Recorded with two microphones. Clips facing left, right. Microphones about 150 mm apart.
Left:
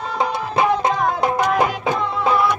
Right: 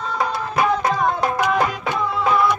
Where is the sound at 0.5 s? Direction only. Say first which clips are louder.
Left 1 dB; 25° left (ahead or behind).